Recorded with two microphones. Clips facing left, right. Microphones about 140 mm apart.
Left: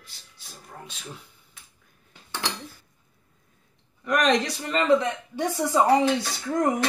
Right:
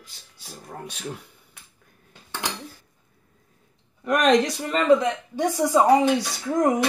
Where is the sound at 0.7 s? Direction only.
60° right (ahead or behind).